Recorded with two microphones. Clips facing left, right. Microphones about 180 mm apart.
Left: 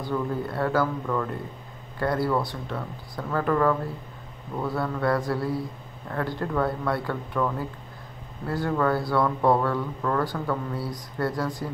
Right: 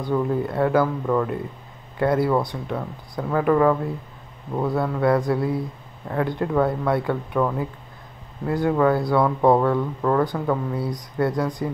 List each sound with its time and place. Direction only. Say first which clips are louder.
0.0 s speech: right 5 dB; 20° right (ahead or behind)